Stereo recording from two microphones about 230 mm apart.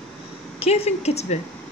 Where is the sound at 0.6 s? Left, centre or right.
Left.